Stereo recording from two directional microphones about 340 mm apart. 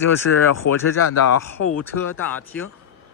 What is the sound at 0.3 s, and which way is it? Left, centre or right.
Speech, left.